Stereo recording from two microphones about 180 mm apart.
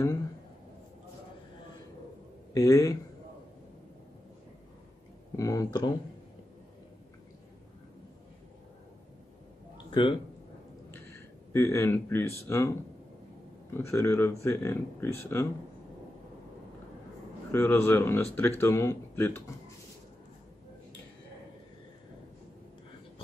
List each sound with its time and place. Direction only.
2.5 s speech: 20° left (ahead or behind)
5.3 s speech: 20° left (ahead or behind)
9.8 s a sound: 25° left (ahead or behind)
11.5 s speech: 15° left (ahead or behind)
13.7 s speech: 15° left (ahead or behind)
17.5 s speech: 15° left (ahead or behind)